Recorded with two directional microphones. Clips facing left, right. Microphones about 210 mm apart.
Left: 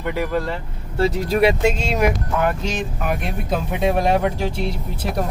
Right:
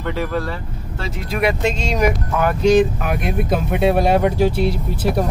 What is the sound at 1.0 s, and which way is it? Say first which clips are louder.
Speech: left 4 dB; 30° left (ahead or behind).